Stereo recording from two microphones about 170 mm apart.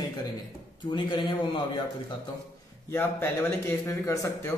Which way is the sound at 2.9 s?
15° left (ahead or behind).